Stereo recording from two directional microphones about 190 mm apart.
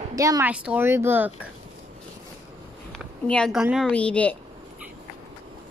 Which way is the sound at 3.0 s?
5° left (ahead or behind).